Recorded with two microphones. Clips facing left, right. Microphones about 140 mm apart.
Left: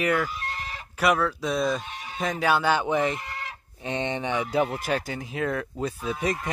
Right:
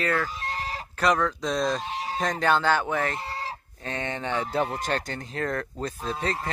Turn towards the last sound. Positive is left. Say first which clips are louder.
# left 2 dB
turn(degrees=10)  # may be behind; listen again after turning